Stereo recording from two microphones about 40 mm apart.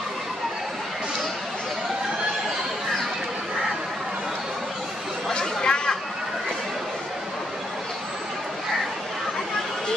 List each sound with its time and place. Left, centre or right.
5.3 s chatter: centre